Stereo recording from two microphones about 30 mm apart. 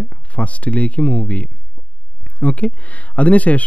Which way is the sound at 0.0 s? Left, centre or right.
Left.